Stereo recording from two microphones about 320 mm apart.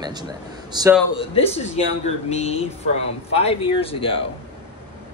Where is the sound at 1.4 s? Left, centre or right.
Centre.